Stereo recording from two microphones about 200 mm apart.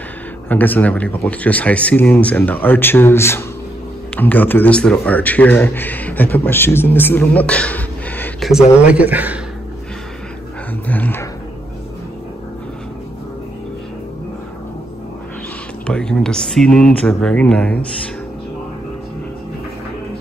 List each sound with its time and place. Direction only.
0.5 s a man's voice: 10° left (ahead or behind)
8.8 s a man's voice: 5° right (ahead or behind)
10.9 s a man's voice: 10° left (ahead or behind)
15.9 s speech: 5° left (ahead or behind)